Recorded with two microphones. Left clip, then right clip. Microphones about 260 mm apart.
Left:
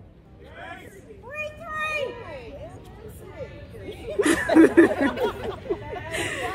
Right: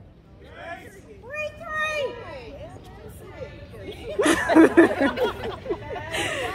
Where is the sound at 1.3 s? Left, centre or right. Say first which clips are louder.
Right 2 dB; left.